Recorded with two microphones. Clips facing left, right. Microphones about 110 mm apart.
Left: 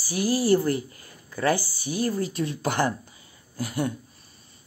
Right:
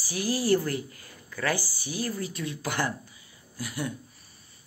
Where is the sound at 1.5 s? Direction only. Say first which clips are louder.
Left 5 dB; 45° left (ahead or behind).